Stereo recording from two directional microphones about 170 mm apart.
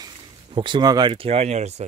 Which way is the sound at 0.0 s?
30° right (ahead or behind).